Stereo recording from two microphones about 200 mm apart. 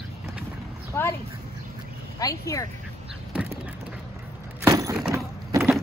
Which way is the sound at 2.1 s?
15° left (ahead or behind).